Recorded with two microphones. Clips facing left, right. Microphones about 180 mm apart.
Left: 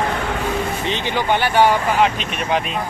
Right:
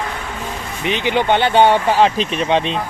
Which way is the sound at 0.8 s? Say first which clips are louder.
Right 4 dB; 15° right (ahead or behind).